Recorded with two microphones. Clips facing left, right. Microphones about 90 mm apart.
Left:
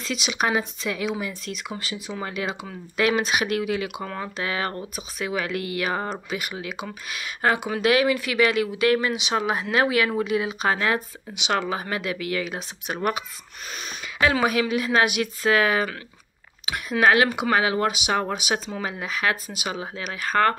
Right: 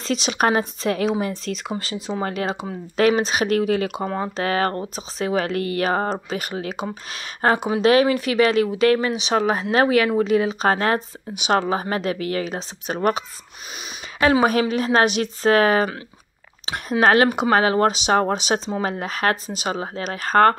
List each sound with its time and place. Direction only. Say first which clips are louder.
0.0 s speech: right 5 dB; 35° right (ahead or behind)
1.2 s speech: right 6 dB; 35° right (ahead or behind)
2.2 s speech: right 3 dB; 45° right (ahead or behind)
4.0 s speech: right 6 dB; 25° right (ahead or behind)
4.4 s speech: right 6 dB; 45° right (ahead or behind)
14.4 s speech: right 4 dB; 40° right (ahead or behind)
17.0 s speech: right 3 dB; 40° right (ahead or behind)